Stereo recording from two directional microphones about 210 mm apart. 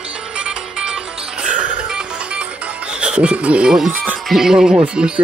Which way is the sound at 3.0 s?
5° right (ahead or behind).